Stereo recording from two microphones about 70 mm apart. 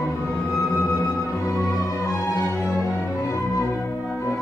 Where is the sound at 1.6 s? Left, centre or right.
Left.